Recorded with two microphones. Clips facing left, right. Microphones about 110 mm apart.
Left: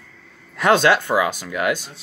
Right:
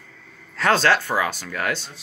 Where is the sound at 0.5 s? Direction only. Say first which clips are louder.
Left 3 dB; 15° left (ahead or behind).